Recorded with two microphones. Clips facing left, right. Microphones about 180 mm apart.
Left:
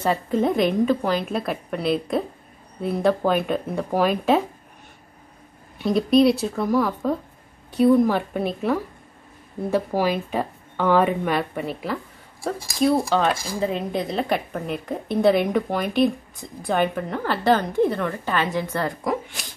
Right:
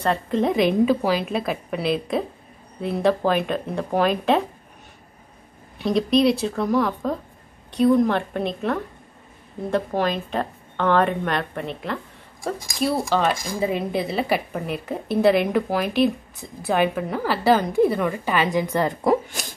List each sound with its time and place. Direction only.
0.0 s a woman's voice: 5° left (ahead or behind)
5.8 s a woman's voice: centre (ahead or behind)
13.1 s a woman's voice: centre (ahead or behind)
13.6 s a woman's voice: 5° right (ahead or behind)
19.0 s speech: 40° right (ahead or behind)